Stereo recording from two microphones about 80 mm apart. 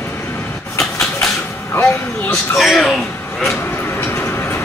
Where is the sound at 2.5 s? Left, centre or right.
Centre.